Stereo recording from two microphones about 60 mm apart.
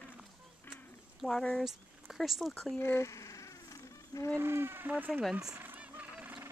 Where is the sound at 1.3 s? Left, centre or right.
Centre.